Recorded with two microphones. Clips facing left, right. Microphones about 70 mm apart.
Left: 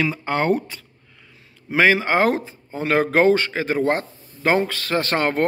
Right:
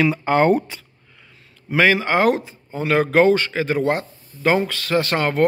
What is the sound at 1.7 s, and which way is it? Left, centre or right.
Speech, left.